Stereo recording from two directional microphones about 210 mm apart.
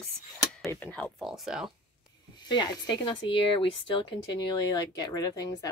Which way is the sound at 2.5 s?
20° left (ahead or behind).